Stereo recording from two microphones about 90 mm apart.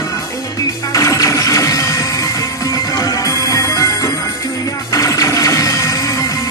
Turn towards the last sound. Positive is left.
turn(degrees=35)  # may be behind; listen again after turning